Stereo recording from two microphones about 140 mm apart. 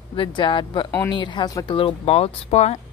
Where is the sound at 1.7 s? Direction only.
40° left (ahead or behind).